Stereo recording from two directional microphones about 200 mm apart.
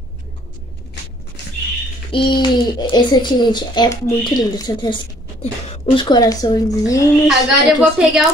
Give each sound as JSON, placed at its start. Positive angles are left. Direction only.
{"t": 2.0, "sound": "a child's voice", "side_deg": 25}
{"t": 7.2, "sound": "a woman's voice", "side_deg": 0}